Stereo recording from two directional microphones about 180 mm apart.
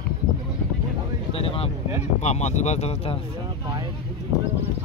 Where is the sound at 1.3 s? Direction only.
30° left (ahead or behind).